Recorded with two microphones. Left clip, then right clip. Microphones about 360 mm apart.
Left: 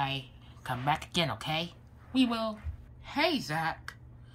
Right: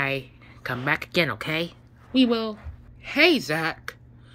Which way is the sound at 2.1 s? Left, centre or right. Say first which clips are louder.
Right 7 dB; centre.